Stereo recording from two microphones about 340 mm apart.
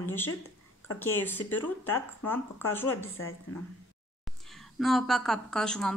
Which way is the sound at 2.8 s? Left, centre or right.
Left.